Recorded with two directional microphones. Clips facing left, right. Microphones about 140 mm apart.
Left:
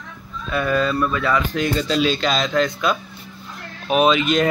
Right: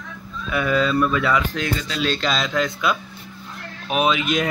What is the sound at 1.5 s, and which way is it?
Speech, 10° left (ahead or behind).